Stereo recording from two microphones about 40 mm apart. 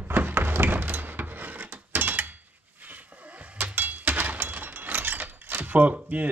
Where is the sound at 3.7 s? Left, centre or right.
Right.